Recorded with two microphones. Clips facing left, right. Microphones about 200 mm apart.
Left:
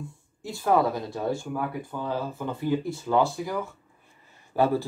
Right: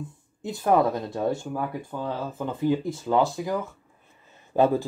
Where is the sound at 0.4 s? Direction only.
20° right (ahead or behind).